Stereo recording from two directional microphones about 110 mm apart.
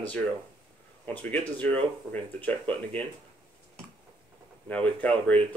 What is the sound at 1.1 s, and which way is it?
Speech, 15° left (ahead or behind).